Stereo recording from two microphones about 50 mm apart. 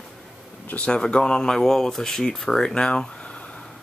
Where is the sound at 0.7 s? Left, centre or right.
Left.